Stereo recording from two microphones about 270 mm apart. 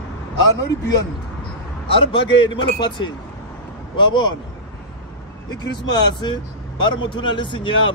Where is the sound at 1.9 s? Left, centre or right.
Centre.